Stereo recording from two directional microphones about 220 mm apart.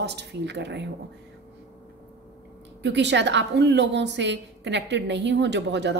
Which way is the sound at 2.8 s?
50° right (ahead or behind).